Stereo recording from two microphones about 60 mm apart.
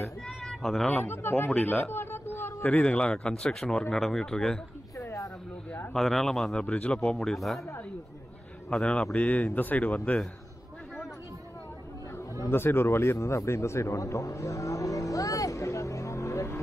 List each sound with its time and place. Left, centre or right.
0.6 s speech: centre
0.9 s speech: left
1.6 s speech: left
1.9 s a sound: left
2.8 s speech: centre
4.9 s a sound: left
5.9 s speech: centre
6.6 s speech: left
7.0 s speech: centre
8.6 s a man's voice: centre
9.1 s speech: left
12.4 s speech: left
13.2 s vehicle: left